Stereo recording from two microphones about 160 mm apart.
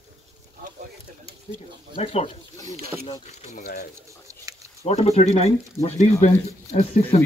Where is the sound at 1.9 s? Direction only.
35° left (ahead or behind).